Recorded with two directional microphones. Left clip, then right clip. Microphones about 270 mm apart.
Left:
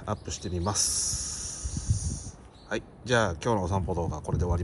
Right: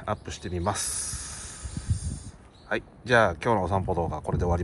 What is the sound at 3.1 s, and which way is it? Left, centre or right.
Speech, centre.